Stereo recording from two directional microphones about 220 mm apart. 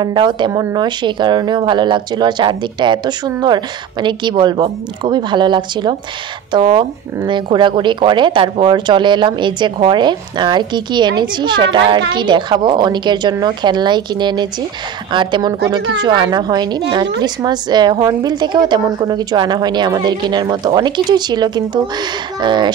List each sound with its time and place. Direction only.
0.0 s speech: 20° right (ahead or behind)